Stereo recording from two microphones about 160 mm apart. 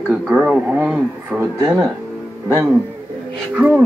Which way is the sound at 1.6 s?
20° right (ahead or behind).